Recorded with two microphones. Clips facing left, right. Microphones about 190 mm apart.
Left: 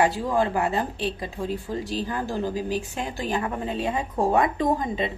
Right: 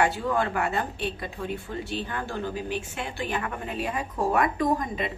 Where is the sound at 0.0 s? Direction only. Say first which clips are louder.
Left 3 dB; 30° left (ahead or behind).